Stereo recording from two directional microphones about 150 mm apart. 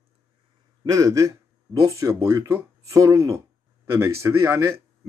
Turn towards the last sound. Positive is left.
turn(degrees=-20)  # may be behind; listen again after turning